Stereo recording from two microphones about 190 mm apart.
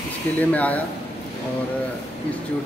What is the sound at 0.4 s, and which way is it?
Speech, 10° left (ahead or behind).